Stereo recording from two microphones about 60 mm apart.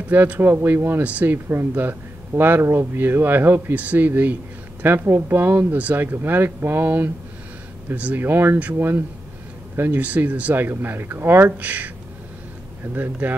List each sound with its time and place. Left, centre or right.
0.1 s speech: right
11.6 s speech: right